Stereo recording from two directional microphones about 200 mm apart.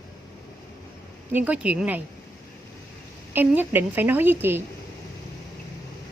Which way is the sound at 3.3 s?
10° right (ahead or behind).